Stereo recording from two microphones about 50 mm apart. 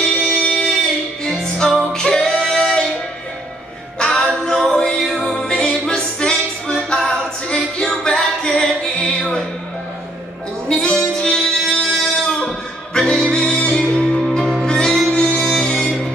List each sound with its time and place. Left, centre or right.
0.2 s music: centre
1.9 s female singing: centre
4.0 s music: centre
10.7 s music: centre